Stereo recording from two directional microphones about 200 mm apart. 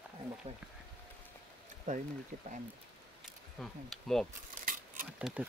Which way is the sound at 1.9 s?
40° right (ahead or behind).